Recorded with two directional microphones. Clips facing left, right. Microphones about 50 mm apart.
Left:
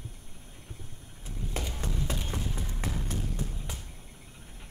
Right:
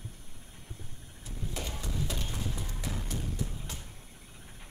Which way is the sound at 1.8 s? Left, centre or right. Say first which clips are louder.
Left 2 dB; left.